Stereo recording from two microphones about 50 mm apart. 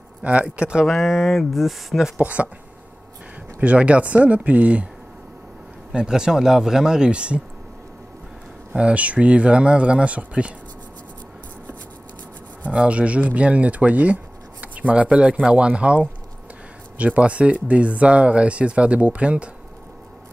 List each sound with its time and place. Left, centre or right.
0.2 s speech: right
0.8 s speech: centre
2.1 s speech: right
3.6 s speech: right
5.9 s speech: centre
8.7 s speech: right
12.7 s speech: right